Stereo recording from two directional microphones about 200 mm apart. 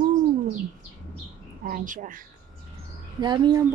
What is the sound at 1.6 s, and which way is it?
Speech, 45° right (ahead or behind).